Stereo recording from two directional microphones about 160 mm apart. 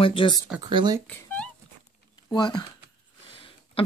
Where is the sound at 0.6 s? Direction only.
25° right (ahead or behind).